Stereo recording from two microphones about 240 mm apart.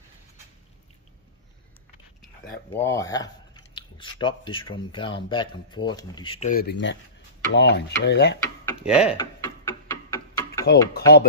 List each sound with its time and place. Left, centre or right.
2.4 s speech: centre; by 6.5 s left
6.5 s speech: left
8.8 s speech: centre
9.1 s tick-tock: centre
10.1 s a sound: centre
10.7 s speech: left